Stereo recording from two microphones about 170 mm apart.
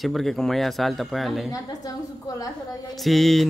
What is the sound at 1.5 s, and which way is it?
A woman's voice, 20° left (ahead or behind).